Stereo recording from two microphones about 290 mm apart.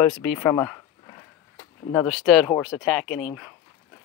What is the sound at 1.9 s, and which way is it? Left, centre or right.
Speech, centre.